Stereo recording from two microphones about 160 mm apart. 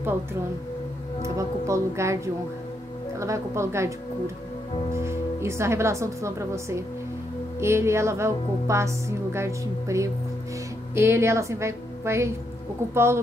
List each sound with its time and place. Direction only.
1.2 s a woman's voice: 20° right (ahead or behind)
4.9 s speech: 15° right (ahead or behind)